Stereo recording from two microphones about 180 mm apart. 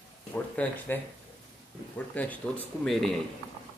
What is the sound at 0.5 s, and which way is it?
Speech, 10° left (ahead or behind).